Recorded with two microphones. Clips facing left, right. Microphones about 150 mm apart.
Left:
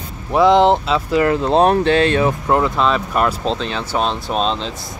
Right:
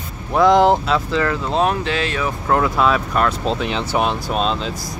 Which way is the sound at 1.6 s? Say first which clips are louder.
Left 6 dB; 35° left (ahead or behind).